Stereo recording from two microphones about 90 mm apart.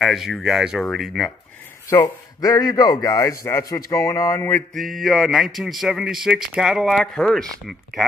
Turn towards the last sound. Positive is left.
turn(degrees=-5)  # may be behind; listen again after turning